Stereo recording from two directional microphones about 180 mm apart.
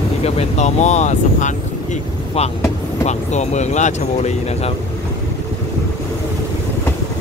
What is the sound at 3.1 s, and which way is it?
Speech, 40° left (ahead or behind).